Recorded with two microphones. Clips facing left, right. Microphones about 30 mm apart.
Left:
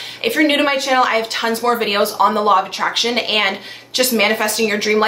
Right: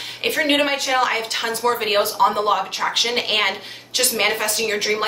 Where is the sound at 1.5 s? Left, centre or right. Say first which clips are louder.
Left 3 dB; left.